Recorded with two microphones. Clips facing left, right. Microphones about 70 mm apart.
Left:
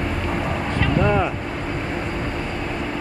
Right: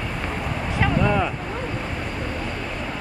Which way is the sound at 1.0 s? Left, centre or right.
Centre.